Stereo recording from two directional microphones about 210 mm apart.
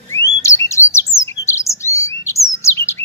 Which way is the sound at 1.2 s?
15° left (ahead or behind).